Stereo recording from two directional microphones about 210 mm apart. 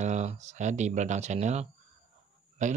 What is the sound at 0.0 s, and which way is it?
Speech, 35° right (ahead or behind).